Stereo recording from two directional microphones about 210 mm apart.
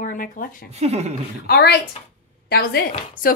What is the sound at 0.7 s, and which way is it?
Speech, 30° right (ahead or behind).